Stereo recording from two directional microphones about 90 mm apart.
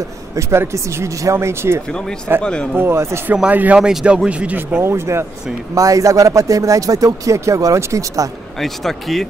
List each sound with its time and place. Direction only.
0.4 s speech: 30° right (ahead or behind)
2.4 s speech: 10° left (ahead or behind)
2.7 s speech: 25° right (ahead or behind)
3.3 s speech: 15° right (ahead or behind); by 8.3 s 35° right (ahead or behind)
8.5 s speech: 5° left (ahead or behind)